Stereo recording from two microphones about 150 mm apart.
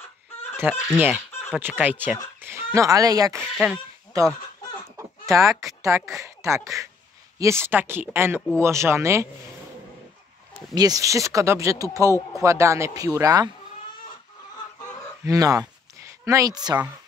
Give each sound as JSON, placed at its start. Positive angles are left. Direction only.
{"t": 0.6, "sound": "speech", "side_deg": -15}
{"t": 3.5, "sound": "speech", "side_deg": 0}
{"t": 4.1, "sound": "speech", "side_deg": -25}
{"t": 4.9, "sound": "chicken", "side_deg": -20}
{"t": 5.7, "sound": "a woman's voice", "side_deg": -20}
{"t": 10.7, "sound": "speech", "side_deg": -25}
{"t": 15.2, "sound": "speech", "side_deg": -25}